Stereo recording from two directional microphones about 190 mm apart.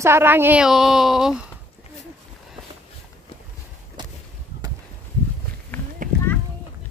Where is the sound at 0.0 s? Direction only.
10° right (ahead or behind).